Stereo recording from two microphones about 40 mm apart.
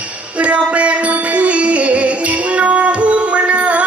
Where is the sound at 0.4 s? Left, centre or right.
Right.